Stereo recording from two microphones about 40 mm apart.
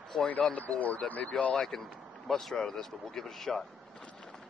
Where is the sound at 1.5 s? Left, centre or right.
Centre.